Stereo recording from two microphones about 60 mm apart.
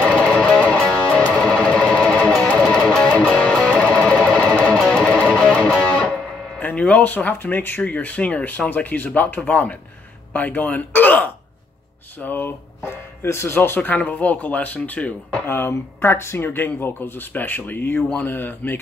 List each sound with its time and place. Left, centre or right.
0.0 s music: centre
2.6 s music: centre
6.6 s speech: left
13.7 s speech: left
15.4 s speech: left